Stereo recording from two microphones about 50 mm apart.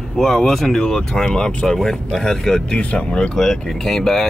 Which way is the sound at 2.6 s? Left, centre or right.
Left.